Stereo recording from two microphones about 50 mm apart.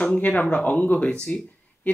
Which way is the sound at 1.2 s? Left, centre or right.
Left.